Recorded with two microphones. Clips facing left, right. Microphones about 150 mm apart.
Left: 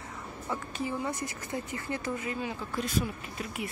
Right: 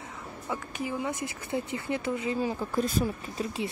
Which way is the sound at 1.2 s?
20° right (ahead or behind).